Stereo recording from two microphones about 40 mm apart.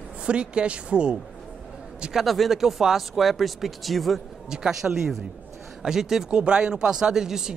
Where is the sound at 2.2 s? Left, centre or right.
Centre.